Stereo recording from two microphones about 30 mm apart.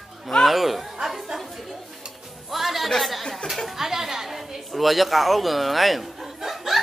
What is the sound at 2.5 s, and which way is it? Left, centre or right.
Speech, centre.